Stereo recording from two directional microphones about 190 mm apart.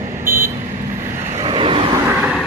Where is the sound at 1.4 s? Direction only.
25° right (ahead or behind).